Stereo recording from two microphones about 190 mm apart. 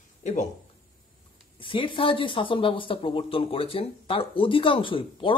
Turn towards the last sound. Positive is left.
turn(degrees=25)  # may be behind; listen again after turning